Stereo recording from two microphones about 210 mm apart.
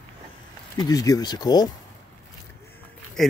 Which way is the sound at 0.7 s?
15° left (ahead or behind).